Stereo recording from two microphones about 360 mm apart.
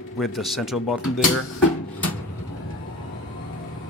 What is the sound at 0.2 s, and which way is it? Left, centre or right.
Speech, centre.